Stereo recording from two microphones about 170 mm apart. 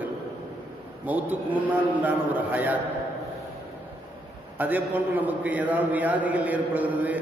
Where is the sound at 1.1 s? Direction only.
10° right (ahead or behind).